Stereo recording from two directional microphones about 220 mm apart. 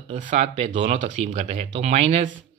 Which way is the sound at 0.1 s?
35° right (ahead or behind).